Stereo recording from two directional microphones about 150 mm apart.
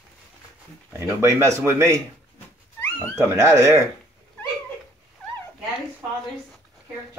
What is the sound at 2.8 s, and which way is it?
Cat, 15° left (ahead or behind).